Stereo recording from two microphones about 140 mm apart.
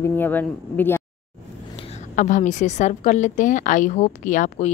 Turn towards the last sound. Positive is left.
turn(degrees=65)  # may be behind; listen again after turning